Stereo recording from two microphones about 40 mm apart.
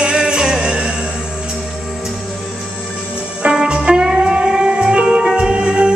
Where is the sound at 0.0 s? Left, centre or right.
Right.